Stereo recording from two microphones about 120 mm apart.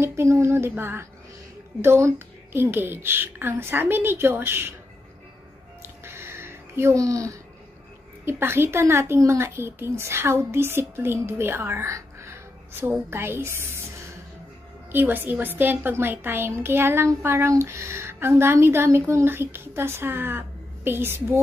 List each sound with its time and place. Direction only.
0.0 s a woman's voice: 25° right (ahead or behind)
6.0 s a sound: 20° right (ahead or behind)
8.3 s a woman's voice: 20° right (ahead or behind)
14.9 s a woman's voice: 15° right (ahead or behind)